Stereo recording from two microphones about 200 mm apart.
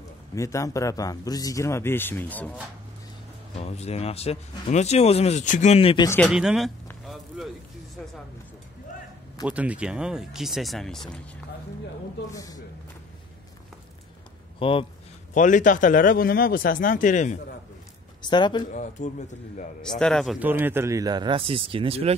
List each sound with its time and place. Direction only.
0.3 s a man's voice: 15° left (ahead or behind)
3.5 s speech: 30° left (ahead or behind)
6.0 s a man's voice: 10° left (ahead or behind)
6.3 s speech: centre (ahead or behind)
6.9 s a sound: centre (ahead or behind)
9.5 s speech: 5° right (ahead or behind)
12.3 s a man's voice: 15° left (ahead or behind)
14.6 s speech: 25° left (ahead or behind)
15.3 s speech: 40° left (ahead or behind)
18.2 s speech: 20° left (ahead or behind)
18.7 s speech: 35° left (ahead or behind)
20.0 s speech: 5° left (ahead or behind); by 22.1 s 30° right (ahead or behind)